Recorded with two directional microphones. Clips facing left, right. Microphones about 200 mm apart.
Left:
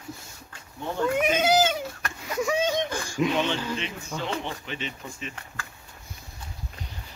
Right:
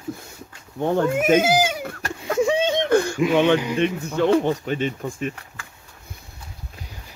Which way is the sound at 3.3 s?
60° right (ahead or behind).